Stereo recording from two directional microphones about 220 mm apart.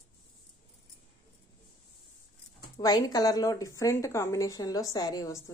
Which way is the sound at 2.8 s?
15° left (ahead or behind).